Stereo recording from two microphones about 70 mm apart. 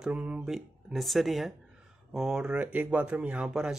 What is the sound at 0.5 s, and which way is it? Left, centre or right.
Speech, centre.